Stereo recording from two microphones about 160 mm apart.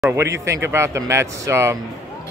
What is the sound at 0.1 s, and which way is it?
Speech, 20° right (ahead or behind).